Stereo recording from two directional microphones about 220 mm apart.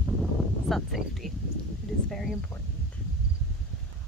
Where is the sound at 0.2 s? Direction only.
Centre (ahead or behind).